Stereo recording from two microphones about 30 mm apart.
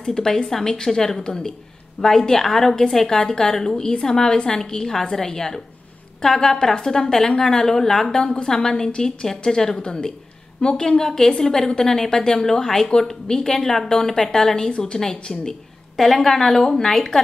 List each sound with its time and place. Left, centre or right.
0.0 s a woman's voice: centre
8.2 s a woman's voice: left
9.8 s speech: left
10.8 s a woman's voice: centre
12.9 s speech: left
13.3 s a woman's voice: centre